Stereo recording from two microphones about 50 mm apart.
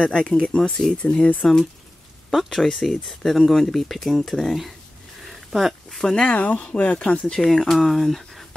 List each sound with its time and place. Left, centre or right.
0.0 s speech: centre
0.9 s speech: left
2.3 s speech: centre
5.2 s a sound: centre
5.9 s speech: centre
6.2 s speech: left
7.3 s speech: centre